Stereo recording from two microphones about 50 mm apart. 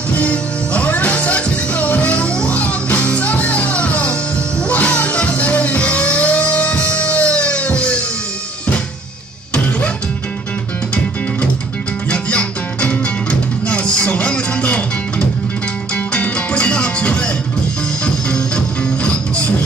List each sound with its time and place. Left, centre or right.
0.2 s music: left
12.1 s music: left